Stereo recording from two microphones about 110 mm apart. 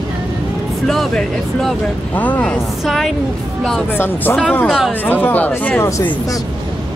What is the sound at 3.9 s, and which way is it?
Speech, 20° left (ahead or behind).